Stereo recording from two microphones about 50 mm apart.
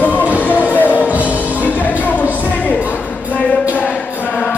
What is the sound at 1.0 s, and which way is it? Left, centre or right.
Music, right.